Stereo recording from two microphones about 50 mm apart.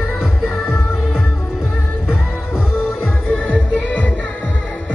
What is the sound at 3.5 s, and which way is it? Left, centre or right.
Music, left.